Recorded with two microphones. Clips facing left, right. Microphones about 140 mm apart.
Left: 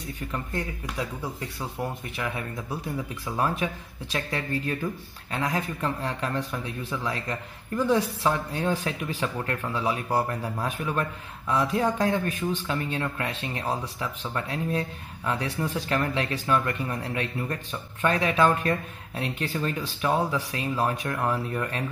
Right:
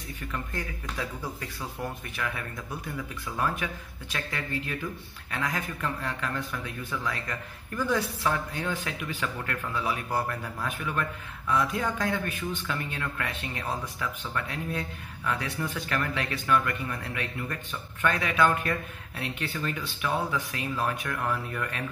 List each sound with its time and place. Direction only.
0.0 s speech: 30° left (ahead or behind)